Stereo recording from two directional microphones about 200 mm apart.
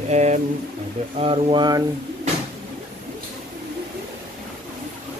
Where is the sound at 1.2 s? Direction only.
25° right (ahead or behind).